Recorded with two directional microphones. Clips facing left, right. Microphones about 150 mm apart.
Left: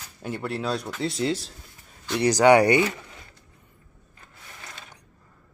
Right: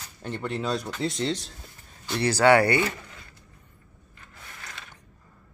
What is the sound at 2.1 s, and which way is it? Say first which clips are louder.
Speech: left 2 dB; 15° left (ahead or behind).